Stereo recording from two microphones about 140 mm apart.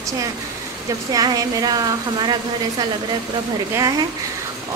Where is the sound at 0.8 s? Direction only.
25° right (ahead or behind).